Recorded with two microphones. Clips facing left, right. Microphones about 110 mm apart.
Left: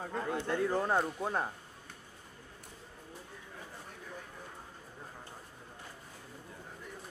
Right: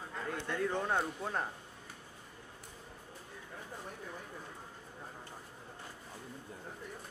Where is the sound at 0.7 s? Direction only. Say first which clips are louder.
Left 2 dB; 5° left (ahead or behind).